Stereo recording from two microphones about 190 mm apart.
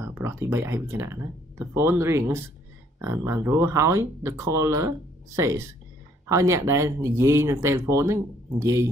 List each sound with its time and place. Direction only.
0.0 s speech: 10° right (ahead or behind)